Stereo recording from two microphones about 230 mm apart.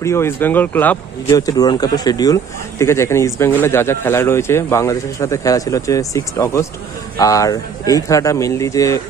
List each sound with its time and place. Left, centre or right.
0.0 s speech: centre